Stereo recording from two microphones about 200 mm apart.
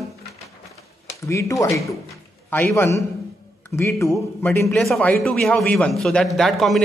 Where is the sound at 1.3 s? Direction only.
15° left (ahead or behind).